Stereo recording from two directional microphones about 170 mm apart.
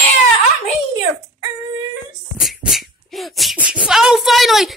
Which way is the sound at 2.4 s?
Centre (ahead or behind).